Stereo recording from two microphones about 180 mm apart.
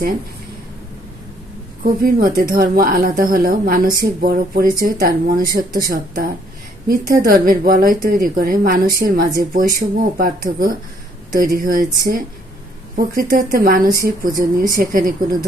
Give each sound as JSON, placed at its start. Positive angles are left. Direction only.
{"t": 1.8, "sound": "speech", "side_deg": -55}